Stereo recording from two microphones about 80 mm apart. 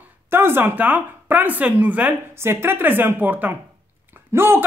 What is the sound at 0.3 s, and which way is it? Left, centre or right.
A man's voice, right.